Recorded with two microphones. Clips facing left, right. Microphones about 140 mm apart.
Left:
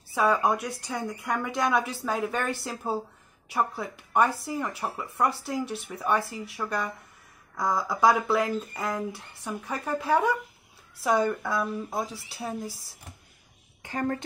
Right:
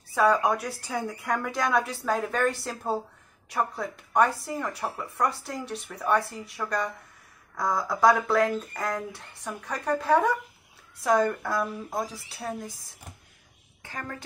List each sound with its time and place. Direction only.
0.1 s speech: 5° left (ahead or behind)
13.9 s speech: 35° left (ahead or behind)